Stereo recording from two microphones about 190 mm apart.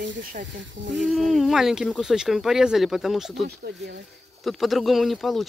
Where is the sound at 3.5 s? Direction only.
60° right (ahead or behind).